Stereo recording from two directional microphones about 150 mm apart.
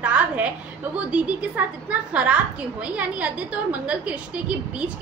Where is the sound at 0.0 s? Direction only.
5° right (ahead or behind).